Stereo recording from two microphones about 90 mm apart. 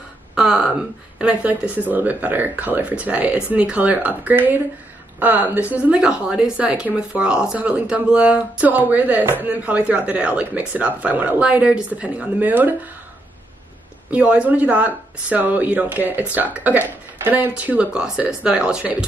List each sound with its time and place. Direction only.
0.4 s a woman's voice: 10° right (ahead or behind)
14.1 s speech: 15° right (ahead or behind)